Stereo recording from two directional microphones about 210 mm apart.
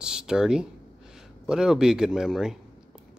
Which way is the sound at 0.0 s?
5° right (ahead or behind).